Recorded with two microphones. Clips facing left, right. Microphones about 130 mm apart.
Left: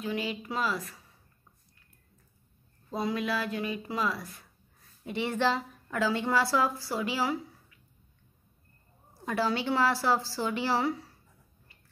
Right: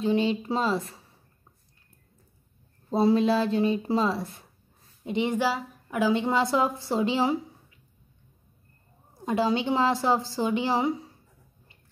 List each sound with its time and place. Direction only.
0.0 s a woman's voice: 30° right (ahead or behind)
2.9 s a woman's voice: 30° right (ahead or behind)
9.2 s a woman's voice: 20° right (ahead or behind)